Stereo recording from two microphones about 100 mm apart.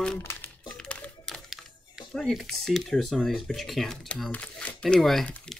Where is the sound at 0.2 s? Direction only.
25° left (ahead or behind).